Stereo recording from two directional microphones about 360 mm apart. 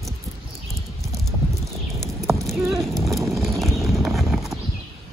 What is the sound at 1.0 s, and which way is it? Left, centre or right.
Clip-clop, centre.